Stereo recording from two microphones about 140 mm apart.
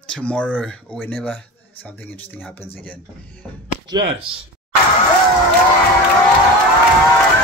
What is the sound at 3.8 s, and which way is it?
Speech, 30° right (ahead or behind).